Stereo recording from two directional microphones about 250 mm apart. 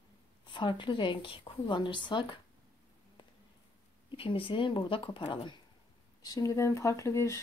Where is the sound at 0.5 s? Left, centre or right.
Centre.